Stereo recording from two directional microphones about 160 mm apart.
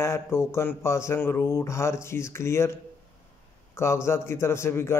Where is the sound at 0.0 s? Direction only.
15° left (ahead or behind).